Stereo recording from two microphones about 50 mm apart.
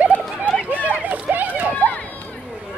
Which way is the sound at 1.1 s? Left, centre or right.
Right.